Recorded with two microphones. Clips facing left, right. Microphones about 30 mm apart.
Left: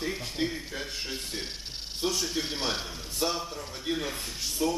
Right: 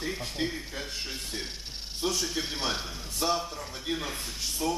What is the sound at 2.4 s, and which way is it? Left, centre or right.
Speech, centre.